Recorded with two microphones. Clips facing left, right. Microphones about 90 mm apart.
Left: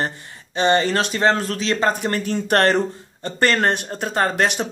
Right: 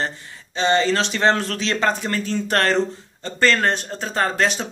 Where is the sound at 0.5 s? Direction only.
50° left (ahead or behind).